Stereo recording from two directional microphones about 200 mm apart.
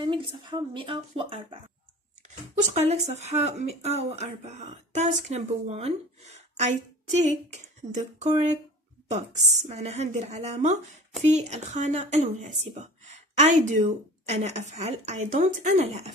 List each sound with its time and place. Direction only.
0.0 s speech: 25° right (ahead or behind)
2.6 s speech: 35° right (ahead or behind)